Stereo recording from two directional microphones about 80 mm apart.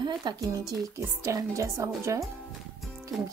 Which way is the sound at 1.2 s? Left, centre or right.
Right.